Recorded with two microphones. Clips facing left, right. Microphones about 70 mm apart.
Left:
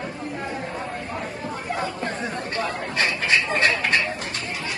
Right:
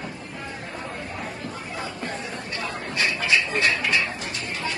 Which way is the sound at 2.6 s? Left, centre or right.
Left.